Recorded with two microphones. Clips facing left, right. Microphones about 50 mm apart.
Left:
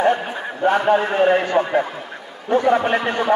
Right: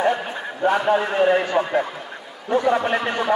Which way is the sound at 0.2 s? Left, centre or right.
Centre.